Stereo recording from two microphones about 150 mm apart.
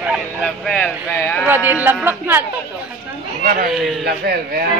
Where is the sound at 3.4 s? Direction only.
60° right (ahead or behind).